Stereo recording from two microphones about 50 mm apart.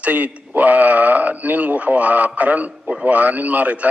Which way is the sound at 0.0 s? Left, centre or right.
Right.